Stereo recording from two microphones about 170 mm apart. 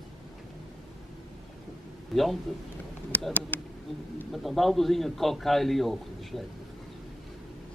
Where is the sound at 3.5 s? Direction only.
10° left (ahead or behind).